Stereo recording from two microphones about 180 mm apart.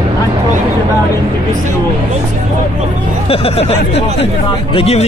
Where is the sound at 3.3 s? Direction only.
35° left (ahead or behind).